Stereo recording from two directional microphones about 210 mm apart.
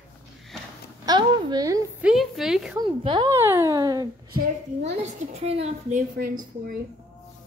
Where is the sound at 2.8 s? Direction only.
25° right (ahead or behind).